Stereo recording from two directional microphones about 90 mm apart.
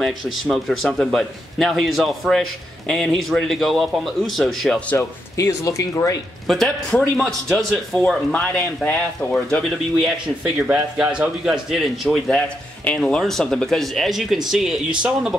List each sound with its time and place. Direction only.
0.0 s speech: centre (ahead or behind)
4.9 s speech: 35° left (ahead or behind)
6.4 s speech: centre (ahead or behind)
9.2 s speech: 20° left (ahead or behind)
9.7 s speech: 5° right (ahead or behind)